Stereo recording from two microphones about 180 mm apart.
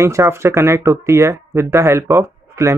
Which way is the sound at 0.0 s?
15° right (ahead or behind).